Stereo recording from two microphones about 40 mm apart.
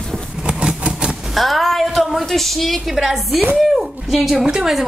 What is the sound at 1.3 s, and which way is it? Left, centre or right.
Speech, centre.